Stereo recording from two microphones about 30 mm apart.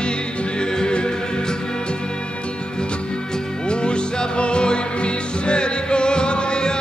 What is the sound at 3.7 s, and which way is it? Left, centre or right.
Music, left.